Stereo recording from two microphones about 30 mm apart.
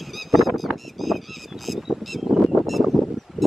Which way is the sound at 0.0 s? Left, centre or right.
Centre.